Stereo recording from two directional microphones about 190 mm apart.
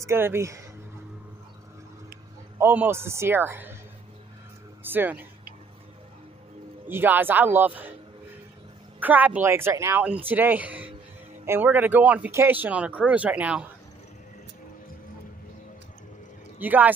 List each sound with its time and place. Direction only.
0.0 s speech: 15° right (ahead or behind)
2.6 s speech: 10° right (ahead or behind)
4.8 s speech: 10° right (ahead or behind)
6.9 s speech: 10° right (ahead or behind)
9.0 s speech: 10° right (ahead or behind)
16.5 s speech: 10° right (ahead or behind)